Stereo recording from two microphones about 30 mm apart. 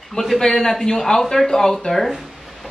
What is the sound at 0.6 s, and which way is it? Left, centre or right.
Speech, centre.